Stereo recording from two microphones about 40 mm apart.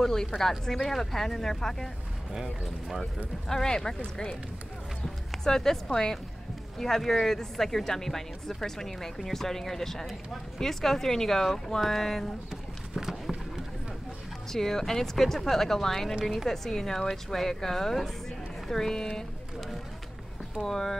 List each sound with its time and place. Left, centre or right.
0.0 s speech: centre
3.4 s speech: centre
5.4 s speech: centre
12.9 s a sound: centre
14.5 s speech: centre
20.6 s speech: centre